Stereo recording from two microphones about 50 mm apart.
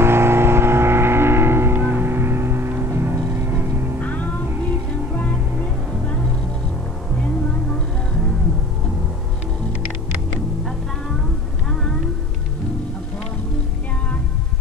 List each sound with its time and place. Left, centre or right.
0.0 s music: right
4.0 s music: left